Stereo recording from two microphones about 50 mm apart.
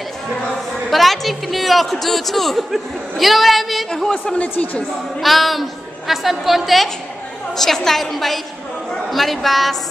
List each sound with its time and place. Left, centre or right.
0.8 s a man's voice: centre
4.1 s a woman's voice: left
5.2 s a woman's voice: centre